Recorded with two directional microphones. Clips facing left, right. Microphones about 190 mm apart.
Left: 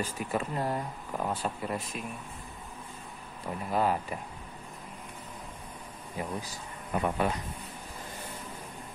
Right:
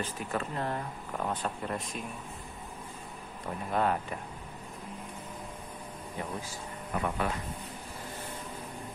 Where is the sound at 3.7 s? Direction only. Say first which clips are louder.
Left 1 dB; 5° left (ahead or behind).